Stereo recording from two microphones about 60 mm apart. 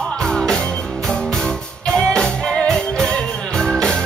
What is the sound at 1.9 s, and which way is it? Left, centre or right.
Music, centre.